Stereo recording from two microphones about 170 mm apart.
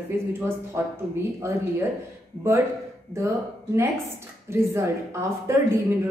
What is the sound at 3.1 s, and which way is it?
Speech, 15° right (ahead or behind).